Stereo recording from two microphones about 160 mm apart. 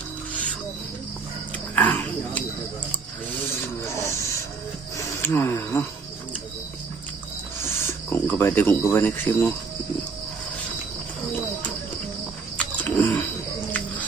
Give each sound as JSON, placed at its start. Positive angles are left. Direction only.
{"t": 1.8, "sound": "a sound", "side_deg": 10}
{"t": 3.8, "sound": "printer", "side_deg": 20}
{"t": 4.9, "sound": "cricket", "side_deg": 15}
{"t": 7.6, "sound": "cricket", "side_deg": 15}
{"t": 8.9, "sound": "speech", "side_deg": 15}
{"t": 12.5, "sound": "wild animals", "side_deg": 10}
{"t": 13.7, "sound": "music", "side_deg": 10}